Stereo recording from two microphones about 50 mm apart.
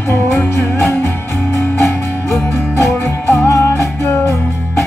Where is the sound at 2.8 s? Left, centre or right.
Left.